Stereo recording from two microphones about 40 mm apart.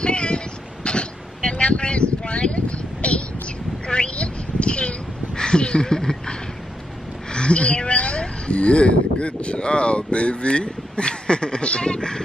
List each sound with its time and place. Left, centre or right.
0.0 s vehicle: left
0.8 s a sound: left
7.2 s speech: left